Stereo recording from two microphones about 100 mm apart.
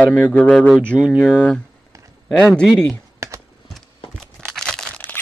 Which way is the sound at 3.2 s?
30° right (ahead or behind).